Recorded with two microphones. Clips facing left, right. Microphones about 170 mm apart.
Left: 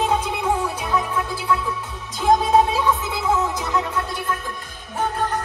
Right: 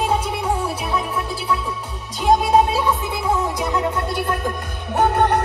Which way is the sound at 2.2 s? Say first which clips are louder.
Right 1 dB; 15° right (ahead or behind).